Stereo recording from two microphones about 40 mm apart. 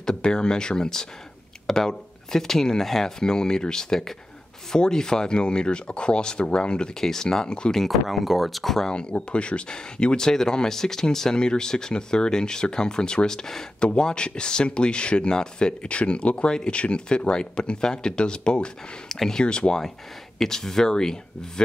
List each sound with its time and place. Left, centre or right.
0.0 s speech: centre
7.0 s speech: centre
7.4 s speech: left
7.7 s speech: centre
8.8 s speech: left
15.9 s speech: left
20.3 s speech: centre